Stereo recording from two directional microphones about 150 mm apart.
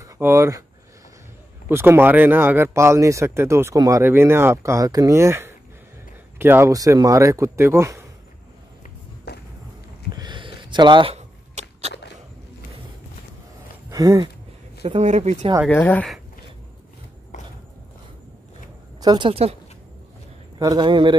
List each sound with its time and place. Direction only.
0.0 s speech: 20° right (ahead or behind)
1.7 s speech: 15° right (ahead or behind)
9.3 s a sound: 90° left
10.1 s a sound: 30° right (ahead or behind)
11.1 s a sound: 50° right (ahead or behind)
13.8 s speech: 20° right (ahead or behind)
14.8 s speech: 45° right (ahead or behind)
15.7 s speech: 10° left (ahead or behind)
18.9 s a man's voice: 30° right (ahead or behind)
20.5 s a man's voice: 25° right (ahead or behind)